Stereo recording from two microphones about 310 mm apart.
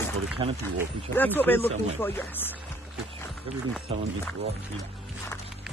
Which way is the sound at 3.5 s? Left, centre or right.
Centre.